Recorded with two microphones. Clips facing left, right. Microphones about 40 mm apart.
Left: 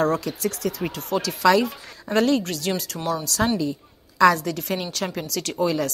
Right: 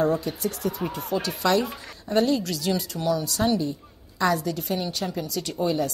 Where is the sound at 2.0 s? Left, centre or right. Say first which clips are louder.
Left 2 dB; left.